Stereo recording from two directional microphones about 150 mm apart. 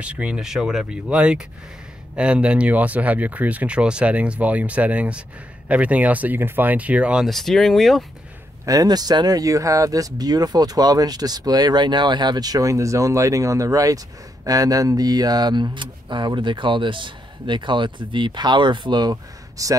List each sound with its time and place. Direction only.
0.0 s speech: 10° right (ahead or behind)
8.6 s speech: 25° right (ahead or behind)